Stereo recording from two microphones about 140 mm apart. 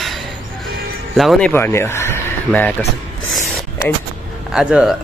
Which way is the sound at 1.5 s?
15° left (ahead or behind).